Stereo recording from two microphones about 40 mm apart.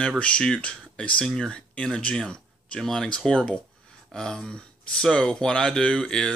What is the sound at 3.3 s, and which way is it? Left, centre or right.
Speech, left.